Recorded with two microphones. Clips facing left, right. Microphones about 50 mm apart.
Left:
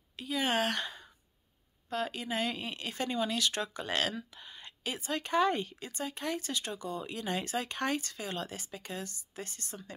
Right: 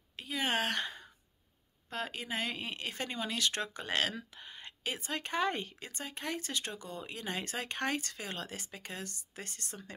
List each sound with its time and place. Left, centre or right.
0.1 s a sound: right
1.9 s speech: right
7.0 s speech: right
7.4 s speech: right